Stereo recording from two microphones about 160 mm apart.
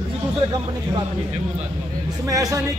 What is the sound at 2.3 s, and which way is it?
Speech, 20° right (ahead or behind).